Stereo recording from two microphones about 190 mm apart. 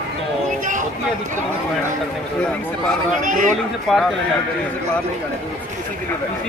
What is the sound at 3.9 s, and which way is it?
Speech, centre (ahead or behind).